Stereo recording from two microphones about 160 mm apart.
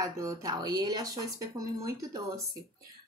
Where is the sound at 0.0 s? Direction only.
20° right (ahead or behind).